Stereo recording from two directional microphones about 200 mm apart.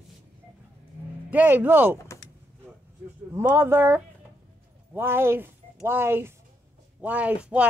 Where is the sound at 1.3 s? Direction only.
10° right (ahead or behind).